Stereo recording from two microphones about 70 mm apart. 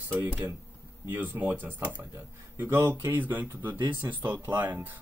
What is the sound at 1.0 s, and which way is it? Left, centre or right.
Speech, right.